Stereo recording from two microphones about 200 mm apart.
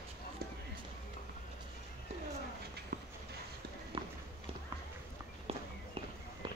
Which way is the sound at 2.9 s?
40° right (ahead or behind).